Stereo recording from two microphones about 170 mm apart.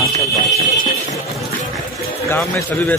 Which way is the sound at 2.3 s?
10° left (ahead or behind).